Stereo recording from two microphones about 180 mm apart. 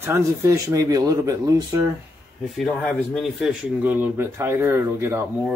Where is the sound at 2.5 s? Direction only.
5° left (ahead or behind).